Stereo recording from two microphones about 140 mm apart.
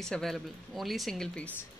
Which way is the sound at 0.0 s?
5° left (ahead or behind).